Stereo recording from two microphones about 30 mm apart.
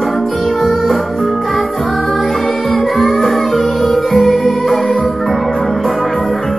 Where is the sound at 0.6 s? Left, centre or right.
Centre.